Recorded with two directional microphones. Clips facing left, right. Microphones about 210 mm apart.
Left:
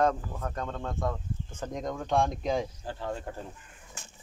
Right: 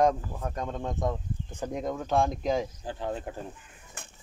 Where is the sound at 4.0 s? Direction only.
55° right (ahead or behind).